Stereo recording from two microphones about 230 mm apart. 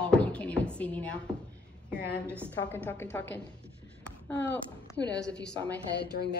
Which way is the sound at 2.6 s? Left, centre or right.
Centre.